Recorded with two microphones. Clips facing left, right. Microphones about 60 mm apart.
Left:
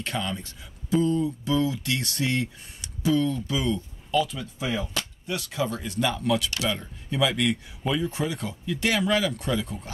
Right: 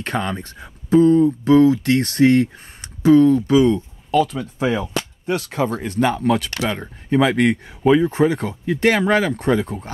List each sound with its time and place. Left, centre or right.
0.0 s speech: right